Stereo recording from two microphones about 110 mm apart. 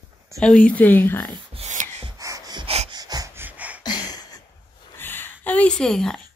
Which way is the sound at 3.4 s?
15° right (ahead or behind).